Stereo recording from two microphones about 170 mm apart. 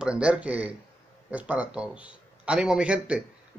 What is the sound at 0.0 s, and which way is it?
A man's voice, 5° right (ahead or behind).